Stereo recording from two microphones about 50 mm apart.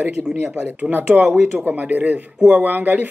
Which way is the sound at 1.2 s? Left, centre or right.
Centre.